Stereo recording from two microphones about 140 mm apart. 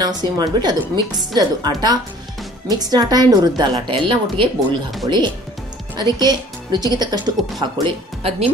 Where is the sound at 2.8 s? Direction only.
30° right (ahead or behind).